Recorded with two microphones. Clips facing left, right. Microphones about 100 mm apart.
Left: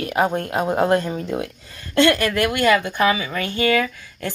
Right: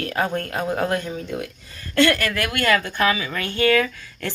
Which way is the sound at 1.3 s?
25° left (ahead or behind).